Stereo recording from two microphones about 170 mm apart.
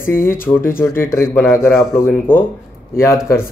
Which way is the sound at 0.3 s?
15° left (ahead or behind).